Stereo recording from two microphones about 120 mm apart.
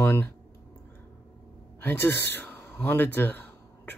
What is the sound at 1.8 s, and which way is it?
Speech, 20° left (ahead or behind).